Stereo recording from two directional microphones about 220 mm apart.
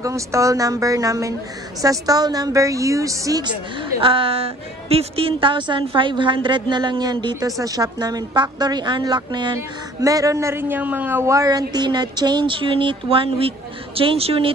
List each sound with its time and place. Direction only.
0.0 s a woman's voice: 15° right (ahead or behind)